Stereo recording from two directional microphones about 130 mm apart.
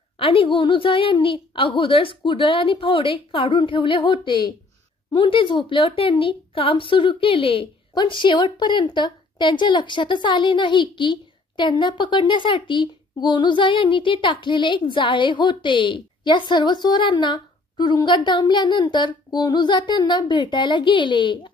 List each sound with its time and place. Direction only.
0.2 s a woman's voice: 45° left (ahead or behind)